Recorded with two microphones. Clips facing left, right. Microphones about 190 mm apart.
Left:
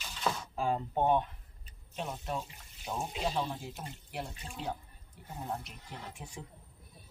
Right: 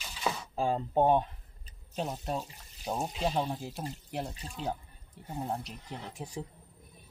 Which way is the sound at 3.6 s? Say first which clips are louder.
Right 5 dB; 35° right (ahead or behind).